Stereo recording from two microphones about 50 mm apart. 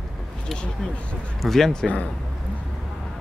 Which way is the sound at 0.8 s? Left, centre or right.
Centre.